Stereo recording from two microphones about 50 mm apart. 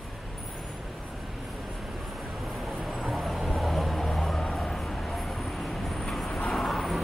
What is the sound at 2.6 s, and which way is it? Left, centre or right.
Vehicle, centre.